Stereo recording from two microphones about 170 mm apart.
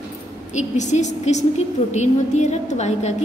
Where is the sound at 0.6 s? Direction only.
45° left (ahead or behind).